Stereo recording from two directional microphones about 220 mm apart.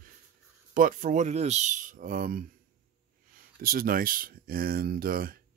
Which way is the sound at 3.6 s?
40° right (ahead or behind).